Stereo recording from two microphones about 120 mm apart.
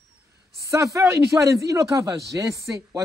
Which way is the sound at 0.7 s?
25° right (ahead or behind).